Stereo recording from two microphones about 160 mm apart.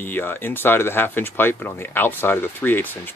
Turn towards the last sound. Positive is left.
turn(degrees=10)  # may be behind; listen again after turning